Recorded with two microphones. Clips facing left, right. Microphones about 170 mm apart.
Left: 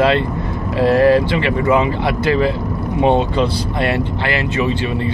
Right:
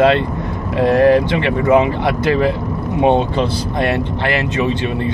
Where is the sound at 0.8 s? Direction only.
20° right (ahead or behind).